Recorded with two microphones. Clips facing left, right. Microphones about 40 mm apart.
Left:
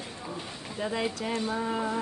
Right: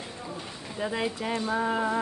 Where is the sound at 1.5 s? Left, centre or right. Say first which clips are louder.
Right 3 dB; right.